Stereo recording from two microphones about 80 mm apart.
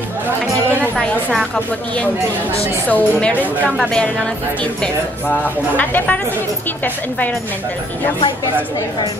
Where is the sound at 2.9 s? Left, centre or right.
Centre.